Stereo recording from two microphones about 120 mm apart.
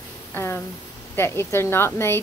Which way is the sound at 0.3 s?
20° left (ahead or behind).